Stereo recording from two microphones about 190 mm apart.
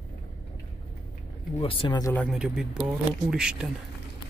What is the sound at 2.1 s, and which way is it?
Speech, 5° left (ahead or behind).